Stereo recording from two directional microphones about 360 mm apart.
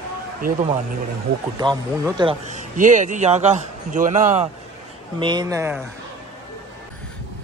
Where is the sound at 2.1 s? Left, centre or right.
Centre.